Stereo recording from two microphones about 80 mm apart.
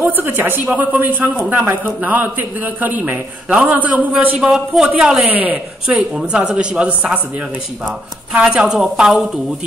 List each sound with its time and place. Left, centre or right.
0.0 s a man's voice: right
4.4 s a man's voice: centre